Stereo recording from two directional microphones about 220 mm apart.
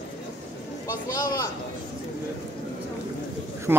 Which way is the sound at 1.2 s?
15° left (ahead or behind).